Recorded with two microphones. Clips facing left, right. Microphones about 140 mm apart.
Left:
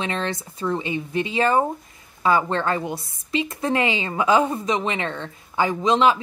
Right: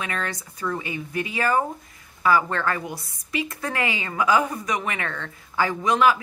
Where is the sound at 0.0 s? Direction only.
25° left (ahead or behind).